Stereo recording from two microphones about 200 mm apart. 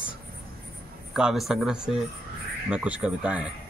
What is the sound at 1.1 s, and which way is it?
Speech, centre (ahead or behind).